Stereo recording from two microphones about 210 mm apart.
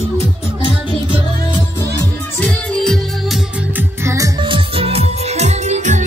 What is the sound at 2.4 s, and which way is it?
Music, 5° left (ahead or behind).